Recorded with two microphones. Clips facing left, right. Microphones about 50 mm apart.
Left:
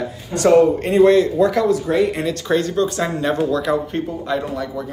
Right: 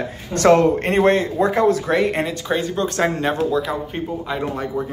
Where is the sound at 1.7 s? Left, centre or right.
Right.